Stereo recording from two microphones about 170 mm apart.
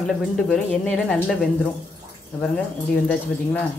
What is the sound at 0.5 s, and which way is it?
Speech, 5° left (ahead or behind).